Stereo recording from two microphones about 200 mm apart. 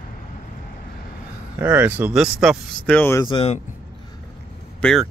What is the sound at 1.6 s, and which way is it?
Speech, 10° right (ahead or behind).